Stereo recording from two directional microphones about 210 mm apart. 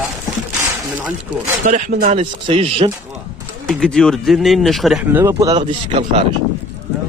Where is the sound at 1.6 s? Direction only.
35° right (ahead or behind).